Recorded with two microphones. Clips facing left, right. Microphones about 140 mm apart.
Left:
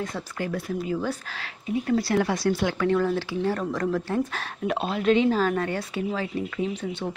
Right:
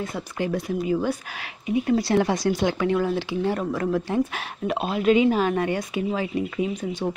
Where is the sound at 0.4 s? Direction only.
20° right (ahead or behind).